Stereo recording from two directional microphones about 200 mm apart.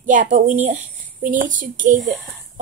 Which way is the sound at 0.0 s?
40° right (ahead or behind).